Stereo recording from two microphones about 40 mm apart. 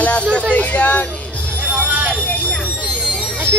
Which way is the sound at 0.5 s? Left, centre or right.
Left.